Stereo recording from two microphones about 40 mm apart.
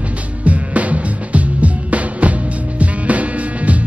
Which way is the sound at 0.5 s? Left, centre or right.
Right.